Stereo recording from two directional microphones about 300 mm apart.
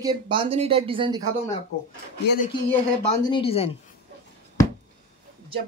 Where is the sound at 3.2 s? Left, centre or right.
Centre.